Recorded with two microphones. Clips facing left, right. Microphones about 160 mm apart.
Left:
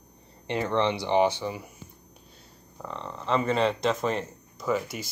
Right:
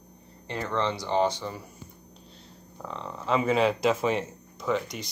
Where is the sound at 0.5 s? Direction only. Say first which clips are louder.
Left 3 dB; 15° left (ahead or behind).